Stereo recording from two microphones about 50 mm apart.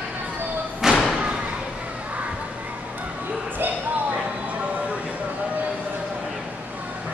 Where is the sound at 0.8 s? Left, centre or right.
Centre.